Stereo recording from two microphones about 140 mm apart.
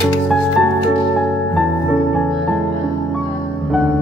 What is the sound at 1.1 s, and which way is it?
Music, centre (ahead or behind).